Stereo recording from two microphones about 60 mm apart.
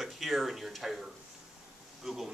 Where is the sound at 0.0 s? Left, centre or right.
Centre.